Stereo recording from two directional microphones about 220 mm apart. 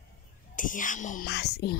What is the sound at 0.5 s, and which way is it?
Speech, 35° left (ahead or behind).